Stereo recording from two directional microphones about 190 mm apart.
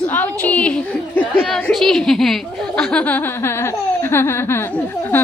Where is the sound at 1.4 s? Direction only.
Centre (ahead or behind).